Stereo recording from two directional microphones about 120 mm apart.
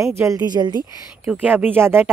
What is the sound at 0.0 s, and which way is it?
Speech, 25° right (ahead or behind).